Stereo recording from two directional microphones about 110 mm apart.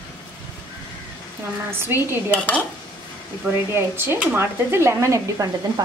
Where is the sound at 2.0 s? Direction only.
20° right (ahead or behind).